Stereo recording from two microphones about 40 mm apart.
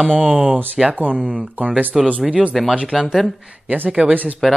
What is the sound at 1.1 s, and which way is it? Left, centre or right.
Speech, right.